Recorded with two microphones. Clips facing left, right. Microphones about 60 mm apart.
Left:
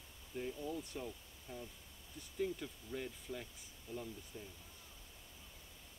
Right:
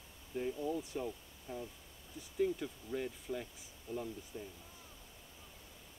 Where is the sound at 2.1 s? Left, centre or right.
Centre.